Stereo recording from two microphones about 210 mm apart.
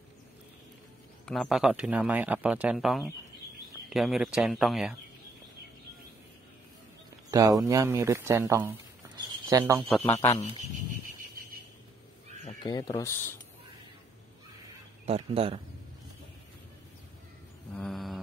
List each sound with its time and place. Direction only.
1.2 s speech: centre (ahead or behind)
7.2 s speech: 15° right (ahead or behind)
10.0 s speech: 10° left (ahead or behind)
10.9 s a sound: 40° right (ahead or behind)
12.6 s speech: 20° left (ahead or behind)
15.0 s speech: 30° right (ahead or behind)
17.7 s mantra: centre (ahead or behind)